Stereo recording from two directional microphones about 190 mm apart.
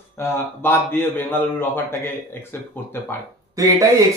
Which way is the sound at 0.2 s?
10° left (ahead or behind).